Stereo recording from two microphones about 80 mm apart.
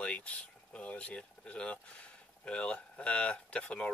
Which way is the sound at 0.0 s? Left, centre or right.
Centre.